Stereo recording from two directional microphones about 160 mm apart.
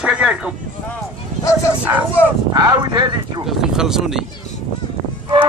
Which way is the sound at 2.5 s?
25° right (ahead or behind).